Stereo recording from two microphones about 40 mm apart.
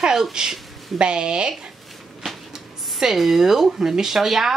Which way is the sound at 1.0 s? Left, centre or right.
Right.